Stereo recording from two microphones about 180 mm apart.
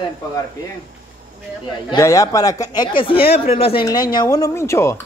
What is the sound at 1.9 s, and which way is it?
Speech, 20° left (ahead or behind).